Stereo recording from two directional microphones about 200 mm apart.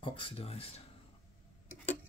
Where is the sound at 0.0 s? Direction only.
25° left (ahead or behind).